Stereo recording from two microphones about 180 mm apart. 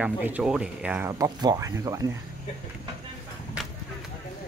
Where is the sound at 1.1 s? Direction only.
20° right (ahead or behind).